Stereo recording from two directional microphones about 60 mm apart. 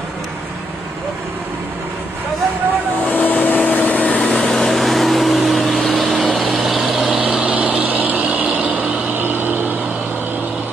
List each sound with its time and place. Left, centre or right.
3.1 s vehicle: left
4.2 s vehicle: centre
7.3 s vehicle: right
8.8 s a sound: right